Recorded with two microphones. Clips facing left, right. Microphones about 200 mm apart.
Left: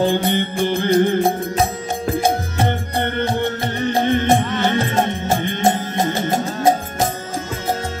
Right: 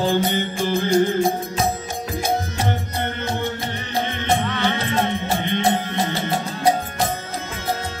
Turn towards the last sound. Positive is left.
turn(degrees=45)  # may be behind; listen again after turning